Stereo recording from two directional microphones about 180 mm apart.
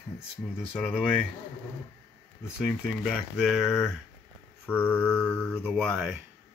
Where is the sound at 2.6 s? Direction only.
Centre (ahead or behind).